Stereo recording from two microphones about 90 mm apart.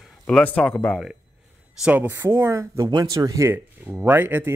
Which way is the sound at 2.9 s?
45° right (ahead or behind).